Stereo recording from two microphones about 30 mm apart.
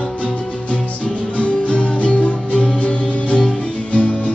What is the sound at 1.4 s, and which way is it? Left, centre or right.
Music, left.